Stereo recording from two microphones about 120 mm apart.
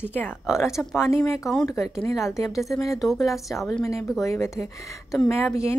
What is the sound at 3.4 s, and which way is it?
A woman's voice, 25° left (ahead or behind).